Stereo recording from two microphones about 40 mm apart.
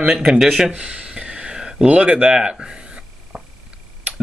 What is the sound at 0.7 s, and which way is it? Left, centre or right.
Speech, right.